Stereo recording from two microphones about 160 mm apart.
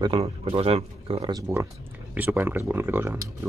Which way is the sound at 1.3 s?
20° right (ahead or behind).